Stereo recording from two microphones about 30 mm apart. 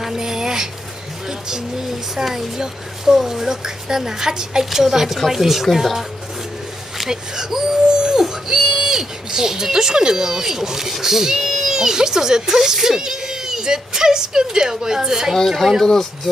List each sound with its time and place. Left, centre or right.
0.2 s a sound: centre
2.2 s speech: centre
7.1 s speech: centre
15.4 s speech: centre